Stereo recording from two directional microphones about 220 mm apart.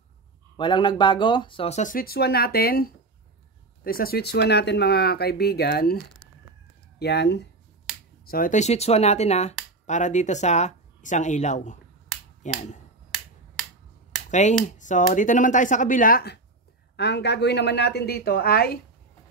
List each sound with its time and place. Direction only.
0.6 s speech: 20° left (ahead or behind); by 5.9 s 45° left (ahead or behind)
7.0 s speech: 50° left (ahead or behind)
8.3 s speech: 35° left (ahead or behind)
14.8 s speech: 35° left (ahead or behind)